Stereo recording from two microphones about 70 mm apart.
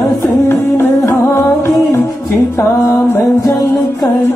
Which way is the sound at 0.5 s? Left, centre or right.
Left.